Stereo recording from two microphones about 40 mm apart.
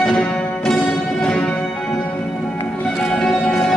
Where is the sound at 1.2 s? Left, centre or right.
Left.